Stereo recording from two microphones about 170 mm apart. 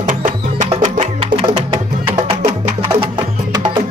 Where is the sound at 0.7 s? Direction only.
35° right (ahead or behind).